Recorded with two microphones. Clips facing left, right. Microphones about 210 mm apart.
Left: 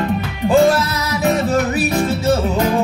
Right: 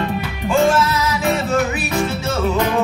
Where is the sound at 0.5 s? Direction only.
35° left (ahead or behind).